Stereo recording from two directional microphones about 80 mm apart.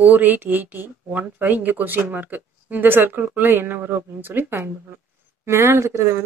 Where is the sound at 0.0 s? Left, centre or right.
Right.